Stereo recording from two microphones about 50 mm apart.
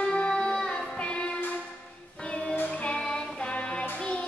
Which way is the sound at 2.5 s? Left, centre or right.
Left.